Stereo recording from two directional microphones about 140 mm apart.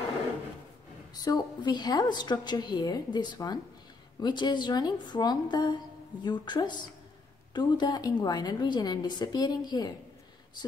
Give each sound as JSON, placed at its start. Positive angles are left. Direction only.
{"t": 1.1, "sound": "a woman's voice", "side_deg": 30}